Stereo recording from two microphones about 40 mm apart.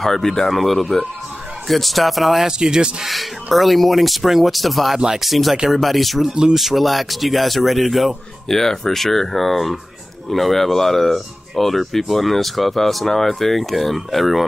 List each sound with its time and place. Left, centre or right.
0.0 s speech: centre
2.4 s speech: centre
3.5 s speech: centre
4.9 s speech: centre